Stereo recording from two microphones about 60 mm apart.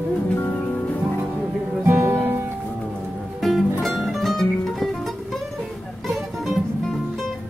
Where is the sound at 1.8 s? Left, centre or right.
Right.